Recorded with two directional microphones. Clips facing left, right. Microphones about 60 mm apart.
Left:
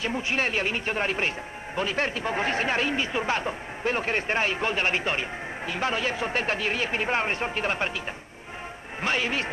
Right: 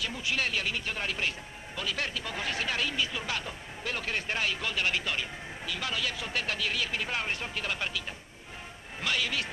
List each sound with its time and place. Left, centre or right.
0.0 s speech: left
9.0 s speech: left